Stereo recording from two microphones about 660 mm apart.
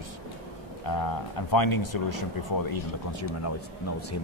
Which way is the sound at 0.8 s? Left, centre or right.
Left.